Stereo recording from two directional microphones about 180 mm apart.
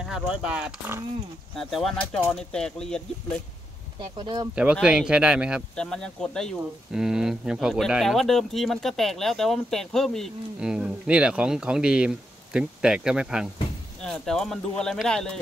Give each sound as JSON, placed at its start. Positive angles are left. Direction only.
{"t": 0.0, "sound": "speech", "side_deg": -5}
{"t": 4.0, "sound": "speech", "side_deg": -25}
{"t": 4.8, "sound": "speech", "side_deg": -5}